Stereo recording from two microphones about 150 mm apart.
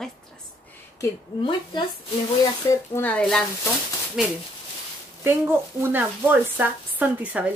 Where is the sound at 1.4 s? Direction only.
30° left (ahead or behind).